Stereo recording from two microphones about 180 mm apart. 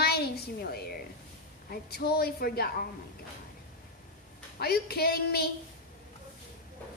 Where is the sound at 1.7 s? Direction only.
60° left (ahead or behind).